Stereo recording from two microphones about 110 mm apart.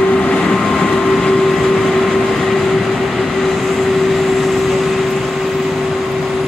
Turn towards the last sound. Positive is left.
turn(degrees=0)  # may be behind; listen again after turning